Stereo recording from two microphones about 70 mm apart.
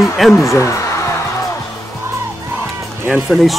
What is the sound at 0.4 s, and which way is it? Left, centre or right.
Speech, left.